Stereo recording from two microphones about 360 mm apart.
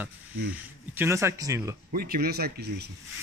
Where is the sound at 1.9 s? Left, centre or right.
Right.